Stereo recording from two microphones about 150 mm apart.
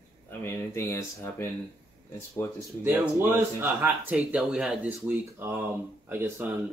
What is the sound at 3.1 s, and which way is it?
Speech, 15° right (ahead or behind).